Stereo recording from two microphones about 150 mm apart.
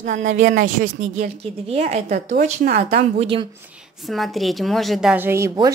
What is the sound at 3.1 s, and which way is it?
Speech, 35° right (ahead or behind).